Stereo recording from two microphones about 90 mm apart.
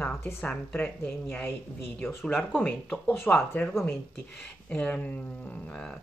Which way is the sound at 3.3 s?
20° left (ahead or behind).